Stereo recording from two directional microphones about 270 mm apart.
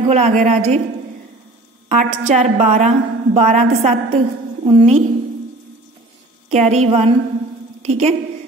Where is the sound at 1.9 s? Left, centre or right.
Right.